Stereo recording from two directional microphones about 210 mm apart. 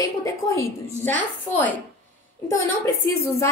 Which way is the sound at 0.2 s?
10° left (ahead or behind).